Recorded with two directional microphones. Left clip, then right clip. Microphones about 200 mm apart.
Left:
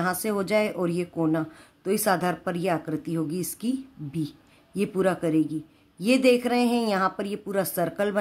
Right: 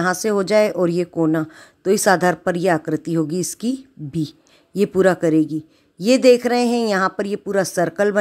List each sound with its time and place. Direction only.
0.0 s speech: 35° right (ahead or behind)